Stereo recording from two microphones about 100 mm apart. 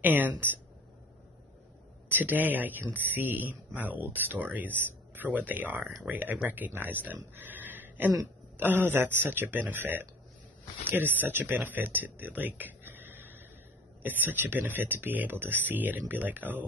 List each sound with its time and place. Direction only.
0.0 s a man's voice: 15° right (ahead or behind)
2.0 s a man's voice: 20° right (ahead or behind)
7.3 s pig: 20° right (ahead or behind)
8.5 s speech: 20° right (ahead or behind)